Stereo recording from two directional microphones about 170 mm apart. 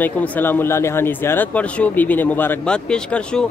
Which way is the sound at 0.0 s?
10° left (ahead or behind).